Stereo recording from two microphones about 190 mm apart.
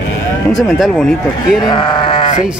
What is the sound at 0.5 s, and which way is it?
Speech, centre (ahead or behind).